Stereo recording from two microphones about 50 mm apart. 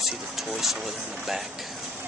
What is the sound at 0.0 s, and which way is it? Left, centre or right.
Speech, centre.